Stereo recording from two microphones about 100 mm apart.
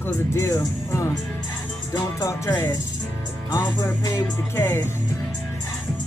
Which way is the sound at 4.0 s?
30° left (ahead or behind).